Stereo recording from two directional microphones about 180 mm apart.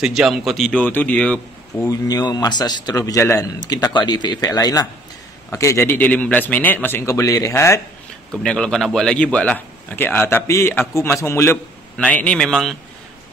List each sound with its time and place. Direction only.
0.0 s a man's voice: 5° right (ahead or behind)
1.9 s a man's voice: 20° left (ahead or behind)
8.4 s a man's voice: 5° left (ahead or behind)